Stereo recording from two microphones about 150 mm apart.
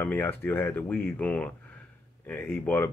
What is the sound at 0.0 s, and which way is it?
Speech, 10° left (ahead or behind).